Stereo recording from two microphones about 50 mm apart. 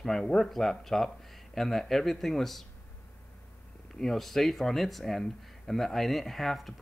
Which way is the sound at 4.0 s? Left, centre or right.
Centre.